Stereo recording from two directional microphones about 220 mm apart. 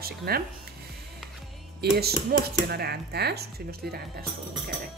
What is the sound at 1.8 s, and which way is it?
Speech, 45° right (ahead or behind).